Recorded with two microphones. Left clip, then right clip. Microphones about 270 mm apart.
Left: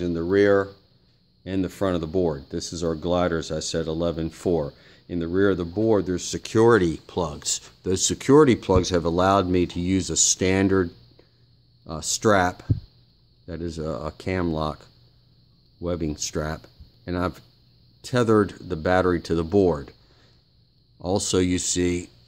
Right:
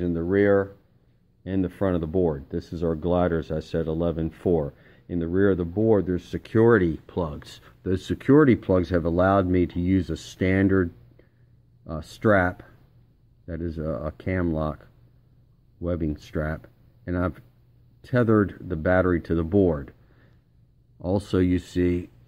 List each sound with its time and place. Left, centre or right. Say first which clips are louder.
0.0 s speech: left 2 dB; centre
21.0 s speech: left 2 dB; centre